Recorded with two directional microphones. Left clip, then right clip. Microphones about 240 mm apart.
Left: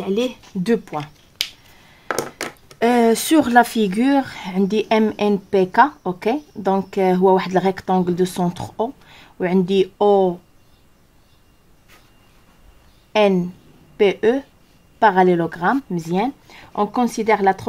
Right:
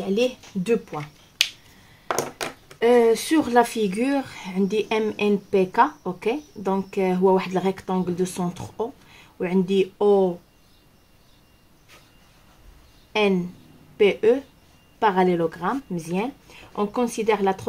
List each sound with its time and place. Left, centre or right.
0.7 s speech: left
2.8 s speech: left
13.1 s speech: left